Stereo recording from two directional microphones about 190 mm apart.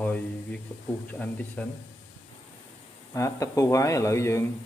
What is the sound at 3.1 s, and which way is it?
Speech, 15° left (ahead or behind).